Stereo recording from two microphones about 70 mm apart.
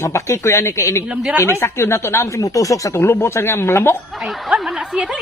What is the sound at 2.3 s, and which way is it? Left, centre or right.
Speech, left.